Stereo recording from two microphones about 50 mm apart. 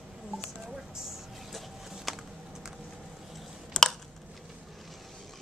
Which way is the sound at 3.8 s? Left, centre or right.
Centre.